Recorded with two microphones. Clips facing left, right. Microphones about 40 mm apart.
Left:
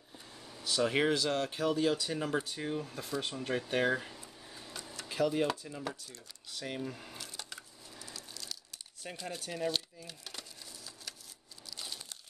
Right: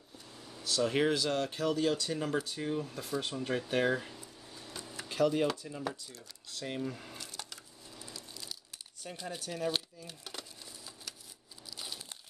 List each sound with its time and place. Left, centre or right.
0.6 s speech: centre
0.9 s speech: centre
4.2 s a sound: centre
5.0 s speech: centre
9.1 s speech: centre
9.4 s speech: centre
10.0 s splinter: centre
11.7 s crumpling: centre